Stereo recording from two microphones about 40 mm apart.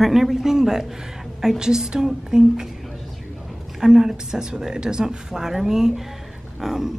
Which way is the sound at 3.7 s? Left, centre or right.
Centre.